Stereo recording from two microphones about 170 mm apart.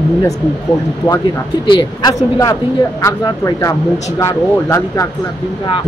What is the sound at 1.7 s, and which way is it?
A man's voice, 25° left (ahead or behind).